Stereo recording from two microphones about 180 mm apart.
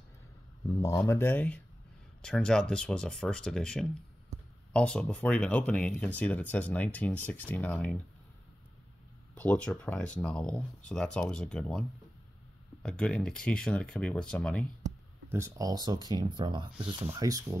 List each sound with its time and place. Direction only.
0.7 s speech: 15° left (ahead or behind)
9.3 s speech: 5° left (ahead or behind)
12.8 s speech: 5° left (ahead or behind)
15.3 s speech: 20° right (ahead or behind)